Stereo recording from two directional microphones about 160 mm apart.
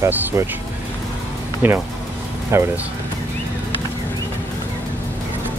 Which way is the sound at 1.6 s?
10° right (ahead or behind).